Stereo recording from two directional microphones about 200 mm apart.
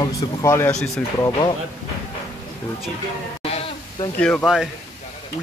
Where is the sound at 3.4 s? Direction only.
30° left (ahead or behind).